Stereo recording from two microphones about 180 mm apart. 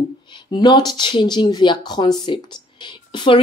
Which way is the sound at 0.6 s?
25° left (ahead or behind).